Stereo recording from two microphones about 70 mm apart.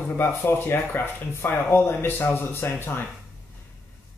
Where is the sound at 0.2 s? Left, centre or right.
Left.